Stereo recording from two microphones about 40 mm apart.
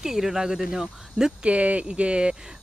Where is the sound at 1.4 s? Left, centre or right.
Right.